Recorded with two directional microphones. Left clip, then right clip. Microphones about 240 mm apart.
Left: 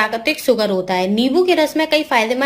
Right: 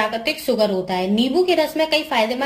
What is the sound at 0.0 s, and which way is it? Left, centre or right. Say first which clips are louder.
A woman's voice: left 4 dB; centre.